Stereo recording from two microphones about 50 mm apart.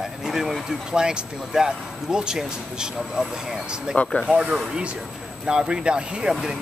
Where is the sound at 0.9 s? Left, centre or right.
Centre.